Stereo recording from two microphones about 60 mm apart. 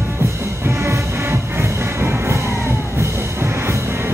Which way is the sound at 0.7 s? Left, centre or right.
Right.